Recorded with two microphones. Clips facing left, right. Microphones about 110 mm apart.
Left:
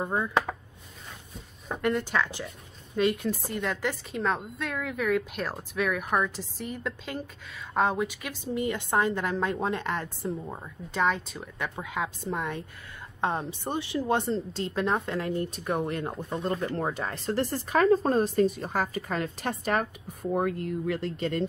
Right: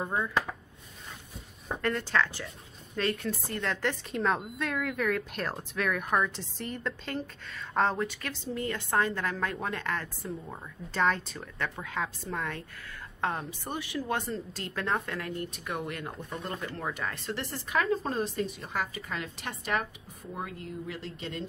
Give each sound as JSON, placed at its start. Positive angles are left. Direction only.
{"t": 0.0, "sound": "a woman's voice", "side_deg": 15}
{"t": 1.8, "sound": "a woman's voice", "side_deg": 15}
{"t": 11.0, "sound": "a woman's voice", "side_deg": 5}
{"t": 11.5, "sound": "a woman's voice", "side_deg": 15}
{"t": 20.3, "sound": "speech", "side_deg": 55}